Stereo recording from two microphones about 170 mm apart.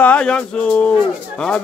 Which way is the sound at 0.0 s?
5° left (ahead or behind).